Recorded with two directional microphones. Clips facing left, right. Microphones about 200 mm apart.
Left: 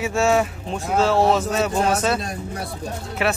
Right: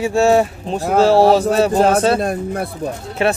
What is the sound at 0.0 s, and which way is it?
Speech, 35° right (ahead or behind).